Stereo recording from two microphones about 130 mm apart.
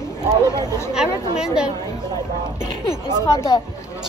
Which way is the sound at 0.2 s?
30° right (ahead or behind).